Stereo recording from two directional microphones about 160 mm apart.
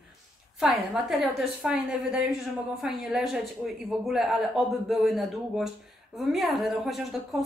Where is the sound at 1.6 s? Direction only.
5° right (ahead or behind).